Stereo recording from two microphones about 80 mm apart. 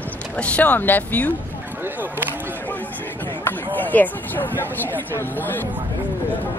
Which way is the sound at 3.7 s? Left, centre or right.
Left.